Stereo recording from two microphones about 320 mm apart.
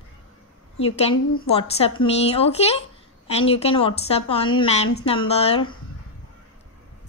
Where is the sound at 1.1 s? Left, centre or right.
Left.